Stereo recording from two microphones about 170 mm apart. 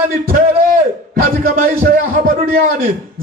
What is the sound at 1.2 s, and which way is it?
A man's voice, 55° right (ahead or behind).